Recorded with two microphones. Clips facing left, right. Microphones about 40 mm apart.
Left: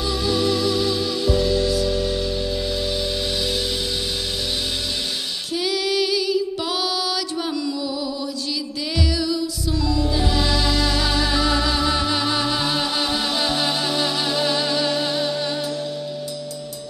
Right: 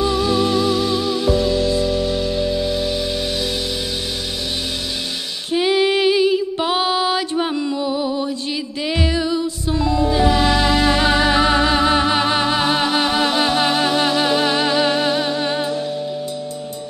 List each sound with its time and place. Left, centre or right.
0.0 s music: right
5.5 s female singing: right
8.8 s music: right